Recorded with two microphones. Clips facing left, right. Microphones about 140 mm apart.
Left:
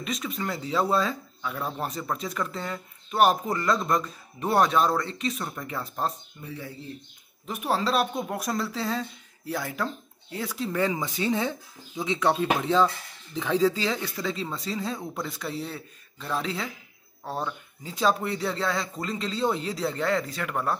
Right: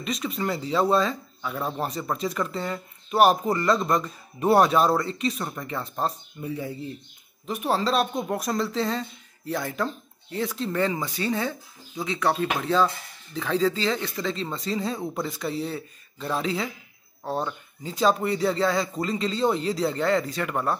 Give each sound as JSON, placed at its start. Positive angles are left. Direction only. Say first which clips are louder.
{"t": 0.0, "sound": "speech", "louder": "right 3 dB", "side_deg": 0}
{"t": 6.4, "sound": "speech", "louder": "right 7 dB", "side_deg": -15}
{"t": 7.4, "sound": "speech", "louder": "right 2 dB", "side_deg": 0}